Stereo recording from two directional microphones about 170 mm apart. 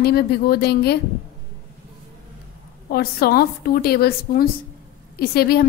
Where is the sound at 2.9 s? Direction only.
65° left (ahead or behind).